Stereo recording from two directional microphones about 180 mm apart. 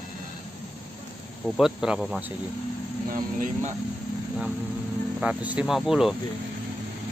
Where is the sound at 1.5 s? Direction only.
Centre (ahead or behind).